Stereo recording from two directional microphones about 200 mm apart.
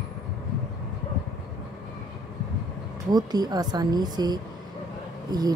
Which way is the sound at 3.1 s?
20° right (ahead or behind).